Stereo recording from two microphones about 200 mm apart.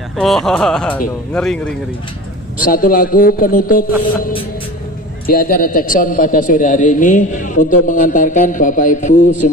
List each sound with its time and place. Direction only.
0.2 s speech: centre (ahead or behind)
2.6 s a man's voice: 45° left (ahead or behind)
5.2 s a man's voice: 45° left (ahead or behind)